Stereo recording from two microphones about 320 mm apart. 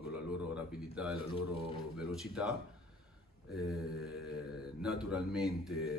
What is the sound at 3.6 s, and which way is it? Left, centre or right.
Speech, centre.